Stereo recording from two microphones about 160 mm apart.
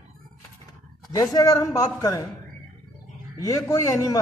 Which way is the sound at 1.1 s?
25° left (ahead or behind).